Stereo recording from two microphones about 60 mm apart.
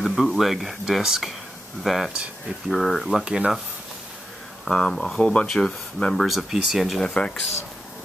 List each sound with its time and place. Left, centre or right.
0.0 s speech: centre
4.6 s speech: centre
6.1 s speech: centre
7.0 s speech: centre